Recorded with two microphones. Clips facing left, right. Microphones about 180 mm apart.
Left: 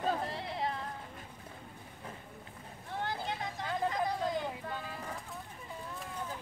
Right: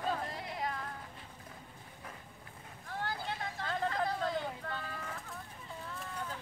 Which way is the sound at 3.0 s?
20° left (ahead or behind).